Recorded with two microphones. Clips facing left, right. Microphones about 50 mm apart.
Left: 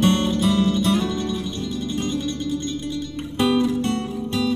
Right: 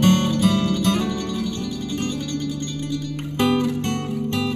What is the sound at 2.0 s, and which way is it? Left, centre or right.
Music, left.